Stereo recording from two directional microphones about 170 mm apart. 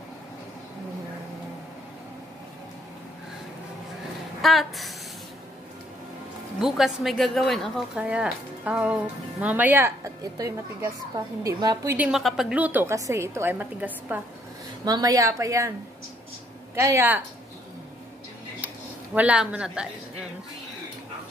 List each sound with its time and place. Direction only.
4.4 s a woman's voice: centre (ahead or behind)
6.6 s a woman's voice: centre (ahead or behind)
12.1 s a woman's voice: centre (ahead or behind)
14.9 s a woman's voice: 20° right (ahead or behind)
16.7 s a woman's voice: 15° right (ahead or behind)
19.1 s a woman's voice: 5° right (ahead or behind)